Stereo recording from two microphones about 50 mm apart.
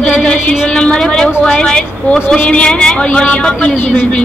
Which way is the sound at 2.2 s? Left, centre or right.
Left.